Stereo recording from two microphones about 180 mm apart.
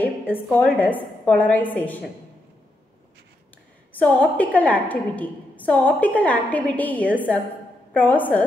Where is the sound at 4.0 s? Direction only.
10° left (ahead or behind).